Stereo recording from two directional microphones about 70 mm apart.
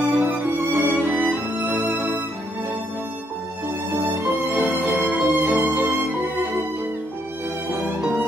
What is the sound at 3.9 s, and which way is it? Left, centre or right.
Music, right.